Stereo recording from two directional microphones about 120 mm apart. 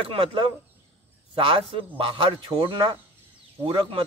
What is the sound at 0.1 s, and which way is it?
Speech, 50° right (ahead or behind).